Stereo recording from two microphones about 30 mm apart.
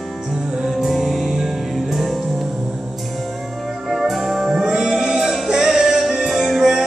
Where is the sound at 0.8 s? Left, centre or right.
Centre.